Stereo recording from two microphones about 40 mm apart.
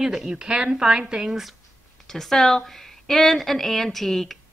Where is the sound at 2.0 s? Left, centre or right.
Centre.